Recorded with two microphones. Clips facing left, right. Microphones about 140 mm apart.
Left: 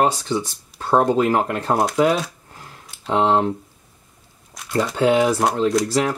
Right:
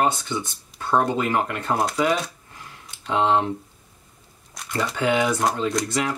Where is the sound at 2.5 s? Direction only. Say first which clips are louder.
Left 1 dB; 35° left (ahead or behind).